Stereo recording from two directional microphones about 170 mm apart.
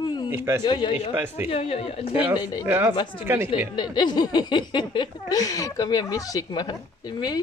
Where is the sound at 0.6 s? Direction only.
25° left (ahead or behind).